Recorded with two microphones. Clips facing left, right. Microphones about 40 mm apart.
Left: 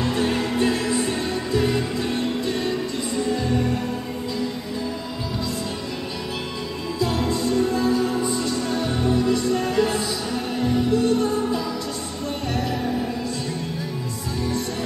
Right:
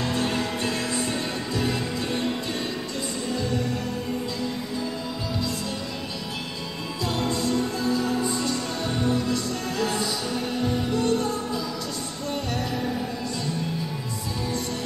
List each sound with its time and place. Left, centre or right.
0.0 s music: centre
3.3 s music: centre
7.0 s music: centre
9.3 s music: centre
10.6 s music: centre